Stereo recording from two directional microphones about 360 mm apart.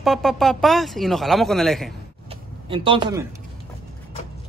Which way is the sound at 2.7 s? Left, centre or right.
Centre.